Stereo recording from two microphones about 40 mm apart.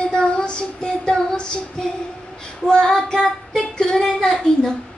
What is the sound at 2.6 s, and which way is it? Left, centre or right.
Speech, centre.